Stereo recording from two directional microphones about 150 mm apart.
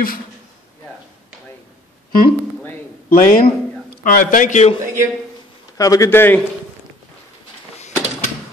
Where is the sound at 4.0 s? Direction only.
65° left (ahead or behind).